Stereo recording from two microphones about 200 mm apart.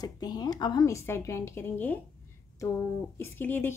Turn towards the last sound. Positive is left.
turn(degrees=10)  # may be behind; listen again after turning